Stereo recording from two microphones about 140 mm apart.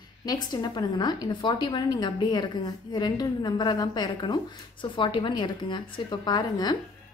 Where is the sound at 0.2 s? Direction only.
30° left (ahead or behind).